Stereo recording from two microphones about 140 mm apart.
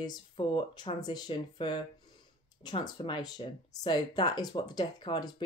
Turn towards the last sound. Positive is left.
turn(degrees=30)  # may be behind; listen again after turning